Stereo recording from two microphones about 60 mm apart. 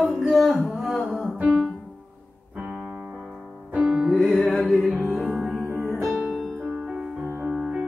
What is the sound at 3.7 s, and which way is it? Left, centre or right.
Music, centre.